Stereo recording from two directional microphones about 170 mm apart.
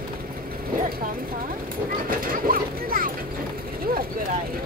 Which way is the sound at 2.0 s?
55° right (ahead or behind).